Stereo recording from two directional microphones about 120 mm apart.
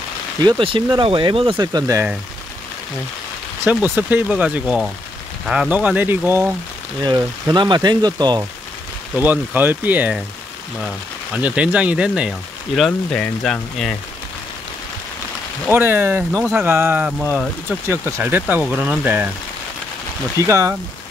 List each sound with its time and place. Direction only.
0.4 s speech: 40° right (ahead or behind)
3.6 s speech: 15° right (ahead or behind)
7.1 s speech: 35° right (ahead or behind)
9.1 s speech: 15° right (ahead or behind)
11.3 s speech: 10° right (ahead or behind)
15.7 s speech: 15° right (ahead or behind)
16.7 s speech: 20° right (ahead or behind)
20.4 s speech: 25° right (ahead or behind)